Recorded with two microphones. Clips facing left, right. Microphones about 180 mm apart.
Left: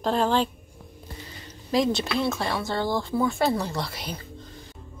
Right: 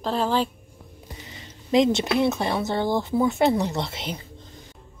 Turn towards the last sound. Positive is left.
turn(degrees=-25)  # may be behind; listen again after turning